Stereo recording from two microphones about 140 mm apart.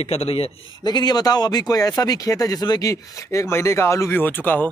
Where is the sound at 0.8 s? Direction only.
30° left (ahead or behind).